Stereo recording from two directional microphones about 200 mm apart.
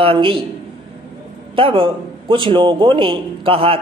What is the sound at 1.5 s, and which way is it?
A man's voice, 25° right (ahead or behind).